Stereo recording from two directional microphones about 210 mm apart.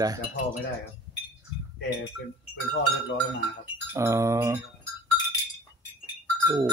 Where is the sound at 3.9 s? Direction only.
15° right (ahead or behind).